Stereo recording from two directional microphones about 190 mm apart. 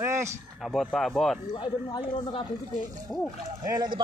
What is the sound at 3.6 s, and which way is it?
Speech, 20° right (ahead or behind).